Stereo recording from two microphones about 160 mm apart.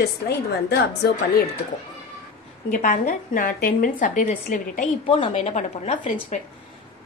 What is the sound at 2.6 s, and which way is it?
A woman's voice, 55° left (ahead or behind).